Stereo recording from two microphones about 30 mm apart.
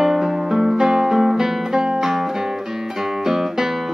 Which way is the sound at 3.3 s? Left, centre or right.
Centre.